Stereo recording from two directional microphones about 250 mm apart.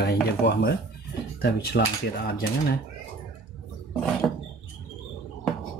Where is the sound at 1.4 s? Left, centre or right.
Left.